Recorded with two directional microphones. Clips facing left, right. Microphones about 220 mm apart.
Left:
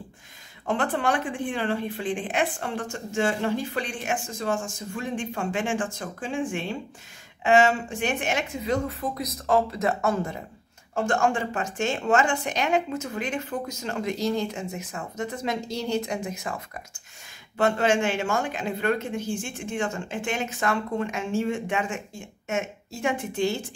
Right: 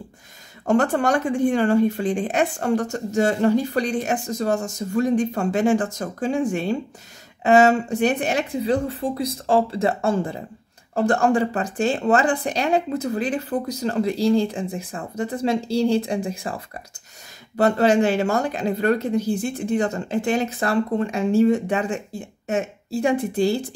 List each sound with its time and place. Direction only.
0.7 s speech: 45° right (ahead or behind)